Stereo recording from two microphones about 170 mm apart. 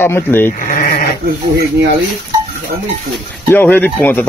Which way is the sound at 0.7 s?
50° left (ahead or behind).